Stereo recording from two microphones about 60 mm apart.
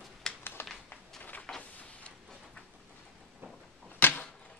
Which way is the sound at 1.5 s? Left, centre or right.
Centre.